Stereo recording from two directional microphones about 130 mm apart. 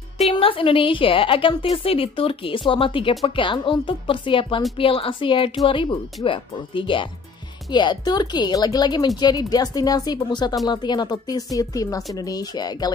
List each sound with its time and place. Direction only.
0.2 s a woman's voice: 45° left (ahead or behind)